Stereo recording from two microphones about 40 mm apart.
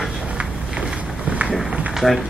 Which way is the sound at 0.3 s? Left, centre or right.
Right.